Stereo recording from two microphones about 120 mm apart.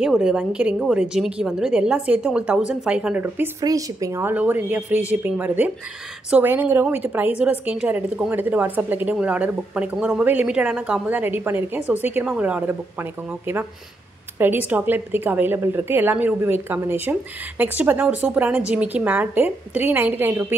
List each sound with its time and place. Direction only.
0.0 s a woman's voice: 5° right (ahead or behind)
3.6 s a woman's voice: 30° right (ahead or behind)
14.7 s a woman's voice: 15° right (ahead or behind)